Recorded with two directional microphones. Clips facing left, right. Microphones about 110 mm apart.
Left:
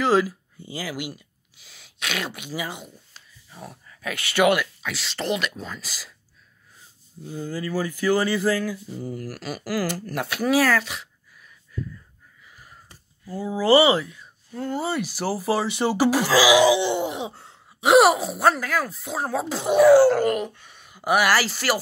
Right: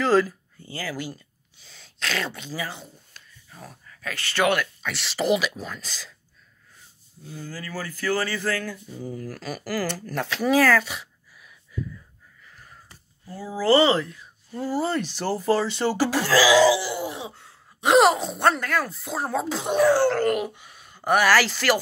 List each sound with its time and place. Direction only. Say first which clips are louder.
0.0 s speech: even; 10° left (ahead or behind)
3.4 s speech: left 3 dB; centre (ahead or behind)
4.0 s speech: left 3 dB; 15° left (ahead or behind)
7.2 s speech: left 7 dB; 20° left (ahead or behind)
10.4 s a sound: right 1 dB; 5° left (ahead or behind)
13.3 s speech: left 2 dB; 20° left (ahead or behind)
17.3 s gasp: left 3 dB; 35° left (ahead or behind)
17.7 s speech: left 2 dB; 5° left (ahead or behind)